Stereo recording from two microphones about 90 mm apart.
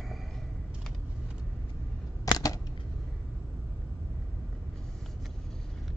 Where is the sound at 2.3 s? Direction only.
45° left (ahead or behind).